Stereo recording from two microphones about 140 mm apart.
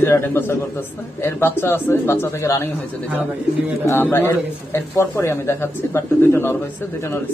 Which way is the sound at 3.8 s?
15° left (ahead or behind).